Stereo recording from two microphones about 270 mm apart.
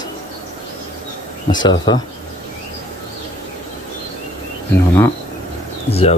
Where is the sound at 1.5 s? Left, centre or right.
Centre.